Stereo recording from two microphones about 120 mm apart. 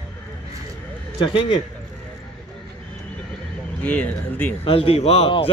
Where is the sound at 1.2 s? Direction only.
45° left (ahead or behind).